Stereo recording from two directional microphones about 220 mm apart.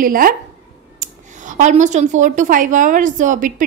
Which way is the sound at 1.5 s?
35° right (ahead or behind).